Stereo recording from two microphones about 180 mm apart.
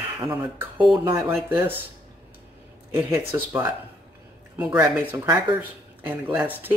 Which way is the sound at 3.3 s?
10° right (ahead or behind).